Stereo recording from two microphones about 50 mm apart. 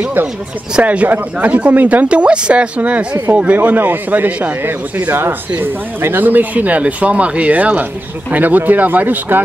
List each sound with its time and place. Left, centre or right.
0.0 s speech: right
2.0 s speech: right